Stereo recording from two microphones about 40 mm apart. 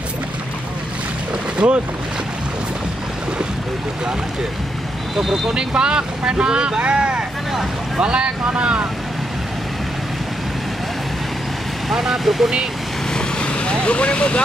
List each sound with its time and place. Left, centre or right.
1.6 s speech: right
5.5 s speech: right
11.9 s speech: centre
13.1 s vehicle: left